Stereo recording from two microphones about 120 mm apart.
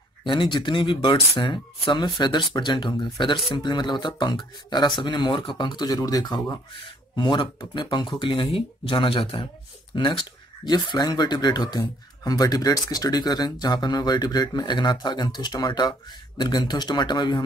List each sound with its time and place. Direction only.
0.2 s speech: 40° left (ahead or behind)